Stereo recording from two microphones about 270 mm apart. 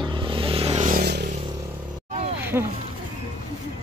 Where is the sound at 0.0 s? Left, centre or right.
Centre; by 1.2 s right.